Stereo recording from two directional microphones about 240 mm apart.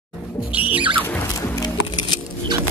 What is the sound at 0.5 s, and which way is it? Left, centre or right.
Music, centre.